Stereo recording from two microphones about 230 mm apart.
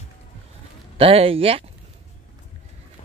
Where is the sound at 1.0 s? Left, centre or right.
Right.